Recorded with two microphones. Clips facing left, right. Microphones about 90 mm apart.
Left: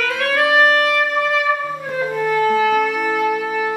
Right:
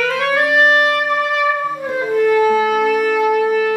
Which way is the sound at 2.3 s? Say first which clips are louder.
Right 2 dB; 10° right (ahead or behind).